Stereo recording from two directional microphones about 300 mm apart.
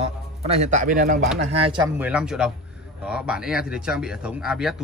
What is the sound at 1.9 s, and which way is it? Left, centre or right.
A man's voice, centre.